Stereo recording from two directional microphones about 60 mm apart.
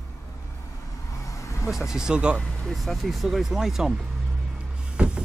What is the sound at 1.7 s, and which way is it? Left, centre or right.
Speech, centre.